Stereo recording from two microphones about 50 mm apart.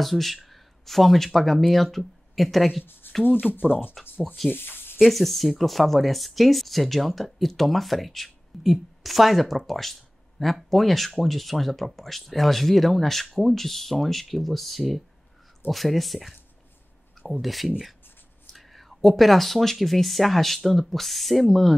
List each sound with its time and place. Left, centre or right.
0.0 s speech: centre
2.8 s speech: left
4.0 s speech: centre
4.5 s speech: left
5.1 s speech: centre